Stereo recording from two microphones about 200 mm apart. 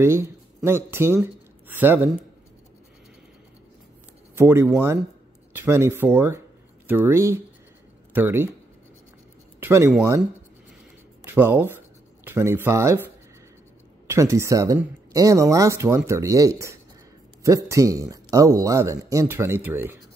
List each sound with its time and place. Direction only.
0.0 s a man's voice: 15° right (ahead or behind)
4.4 s speech: 10° right (ahead or behind)
9.6 s speech: 15° right (ahead or behind)
11.2 s speech: 10° right (ahead or behind)